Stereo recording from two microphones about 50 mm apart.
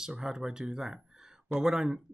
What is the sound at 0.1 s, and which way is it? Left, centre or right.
Speech, centre.